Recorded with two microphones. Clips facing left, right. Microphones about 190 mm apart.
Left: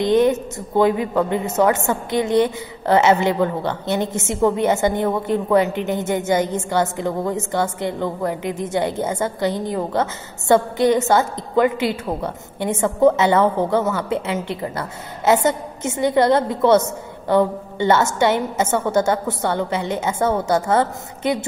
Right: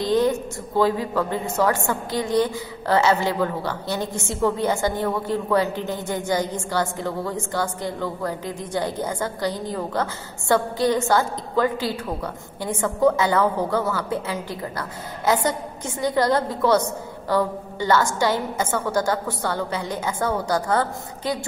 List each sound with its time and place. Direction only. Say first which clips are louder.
0.0 s a woman's voice: left 4 dB; 20° left (ahead or behind)